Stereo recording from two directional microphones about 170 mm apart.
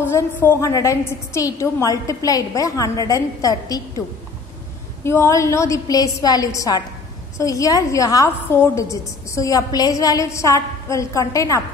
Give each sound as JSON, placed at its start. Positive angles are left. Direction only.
{"t": 0.0, "sound": "a woman's voice", "side_deg": 10}
{"t": 5.0, "sound": "a woman's voice", "side_deg": 15}